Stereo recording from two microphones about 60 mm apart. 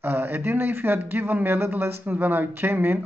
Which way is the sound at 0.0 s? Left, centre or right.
Right.